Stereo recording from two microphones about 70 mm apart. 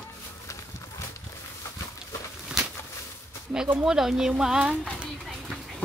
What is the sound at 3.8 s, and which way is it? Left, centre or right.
Speech, centre.